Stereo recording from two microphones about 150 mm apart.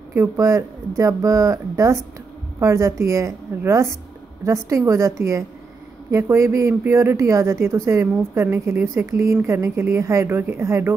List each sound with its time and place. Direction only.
0.1 s speech: 20° right (ahead or behind)